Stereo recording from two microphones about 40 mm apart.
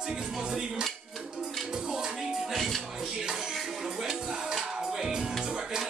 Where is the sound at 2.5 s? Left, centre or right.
Centre.